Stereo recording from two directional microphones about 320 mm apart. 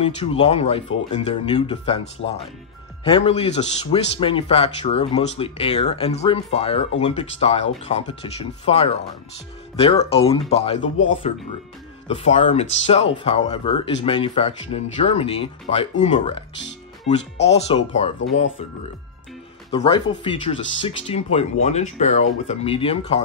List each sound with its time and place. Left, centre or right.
0.0 s speech: centre
12.1 s speech: centre
19.7 s speech: centre